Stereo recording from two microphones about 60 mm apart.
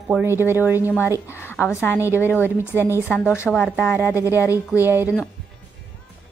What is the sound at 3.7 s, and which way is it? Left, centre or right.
Speech, left.